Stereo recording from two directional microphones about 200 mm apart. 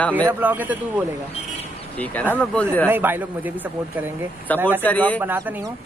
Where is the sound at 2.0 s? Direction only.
10° left (ahead or behind).